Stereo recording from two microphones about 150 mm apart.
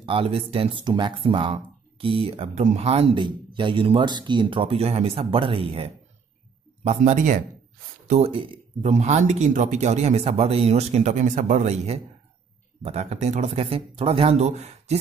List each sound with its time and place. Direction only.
0.0 s a man's voice: 35° right (ahead or behind)
6.8 s speech: 45° right (ahead or behind)
8.1 s speech: 40° right (ahead or behind)
8.9 s speech: 50° right (ahead or behind)